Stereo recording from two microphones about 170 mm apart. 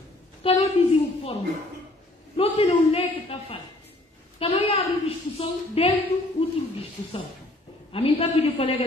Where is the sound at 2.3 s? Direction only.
35° left (ahead or behind).